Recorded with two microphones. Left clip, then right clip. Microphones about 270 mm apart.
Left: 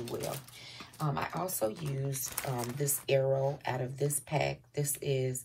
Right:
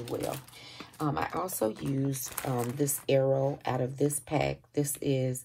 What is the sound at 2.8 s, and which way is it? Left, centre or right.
Speech, right.